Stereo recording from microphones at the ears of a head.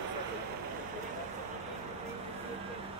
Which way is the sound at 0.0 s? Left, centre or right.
Right.